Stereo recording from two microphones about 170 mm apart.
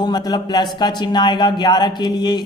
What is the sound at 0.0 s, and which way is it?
A man's voice, 25° left (ahead or behind).